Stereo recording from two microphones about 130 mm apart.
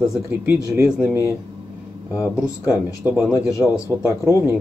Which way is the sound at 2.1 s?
10° right (ahead or behind).